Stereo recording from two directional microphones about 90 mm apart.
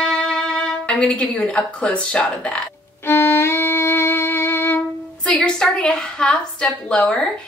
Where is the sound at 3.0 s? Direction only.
30° left (ahead or behind).